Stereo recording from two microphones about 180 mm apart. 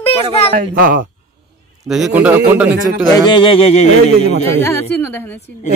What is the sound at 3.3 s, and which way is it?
Speech, 25° left (ahead or behind).